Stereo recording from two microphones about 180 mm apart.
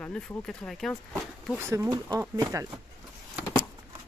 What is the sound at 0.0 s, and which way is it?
Speech, 5° left (ahead or behind).